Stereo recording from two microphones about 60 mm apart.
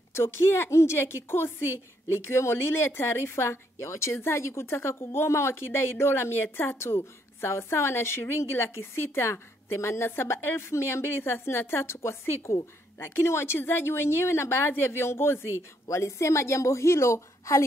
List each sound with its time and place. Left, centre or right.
0.1 s a woman's voice: left
15.9 s a woman's voice: left